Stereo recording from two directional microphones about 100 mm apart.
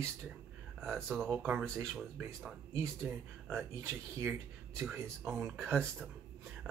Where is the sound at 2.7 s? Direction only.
25° right (ahead or behind).